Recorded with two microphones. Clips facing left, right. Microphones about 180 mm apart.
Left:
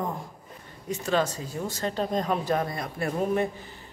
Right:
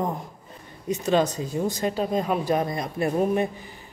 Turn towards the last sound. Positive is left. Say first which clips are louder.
# right 3 dB
turn(degrees=-20)  # may be behind; listen again after turning